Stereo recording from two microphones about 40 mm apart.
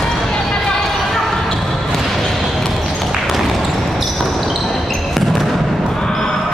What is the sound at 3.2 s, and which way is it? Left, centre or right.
Basketball bounce, centre.